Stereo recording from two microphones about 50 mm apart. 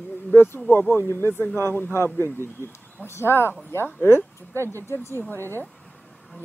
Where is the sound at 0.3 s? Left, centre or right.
Left.